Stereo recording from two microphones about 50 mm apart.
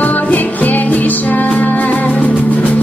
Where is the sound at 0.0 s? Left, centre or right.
Left.